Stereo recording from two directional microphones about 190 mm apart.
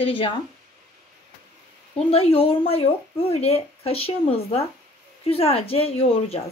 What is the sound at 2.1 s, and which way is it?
Speech, 30° left (ahead or behind).